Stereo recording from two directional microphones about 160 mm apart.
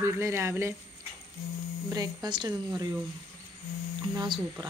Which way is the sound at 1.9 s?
25° right (ahead or behind).